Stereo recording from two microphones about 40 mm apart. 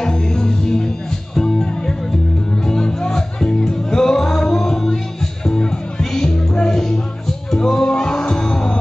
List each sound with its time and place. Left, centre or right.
0.0 s music: centre